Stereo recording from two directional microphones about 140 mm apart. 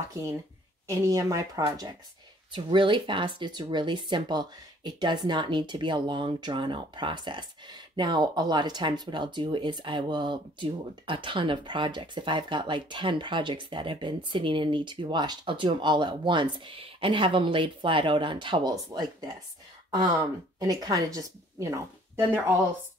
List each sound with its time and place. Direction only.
0.1 s a woman's voice: 20° right (ahead or behind)